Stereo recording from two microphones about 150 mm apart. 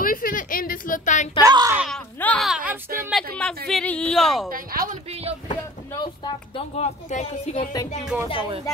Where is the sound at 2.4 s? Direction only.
5° right (ahead or behind).